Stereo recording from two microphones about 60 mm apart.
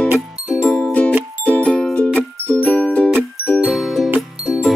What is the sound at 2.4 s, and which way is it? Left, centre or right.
Music, centre.